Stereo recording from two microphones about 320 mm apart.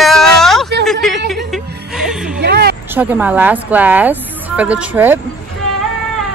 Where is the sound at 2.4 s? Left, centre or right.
Right.